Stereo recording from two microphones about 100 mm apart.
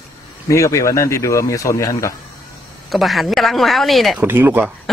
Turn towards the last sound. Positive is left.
turn(degrees=-20)  # may be behind; listen again after turning